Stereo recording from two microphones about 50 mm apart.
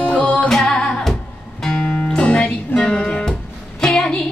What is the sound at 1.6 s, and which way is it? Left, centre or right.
Music, centre.